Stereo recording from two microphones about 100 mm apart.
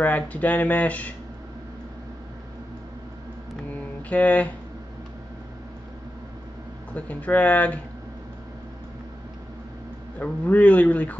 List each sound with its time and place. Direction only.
0.0 s speech: 15° left (ahead or behind)
3.6 s mantra: 15° left (ahead or behind)
6.9 s speech: 15° left (ahead or behind)
10.1 s speech: 15° left (ahead or behind)